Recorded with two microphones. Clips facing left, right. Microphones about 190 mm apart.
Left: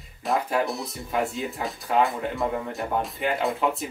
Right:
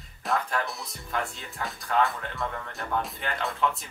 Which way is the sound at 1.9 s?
15° left (ahead or behind).